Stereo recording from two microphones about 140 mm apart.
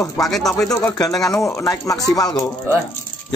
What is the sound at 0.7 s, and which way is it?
Speech, 20° left (ahead or behind).